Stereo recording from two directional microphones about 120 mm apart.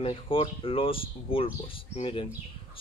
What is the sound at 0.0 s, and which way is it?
Speech, 50° left (ahead or behind).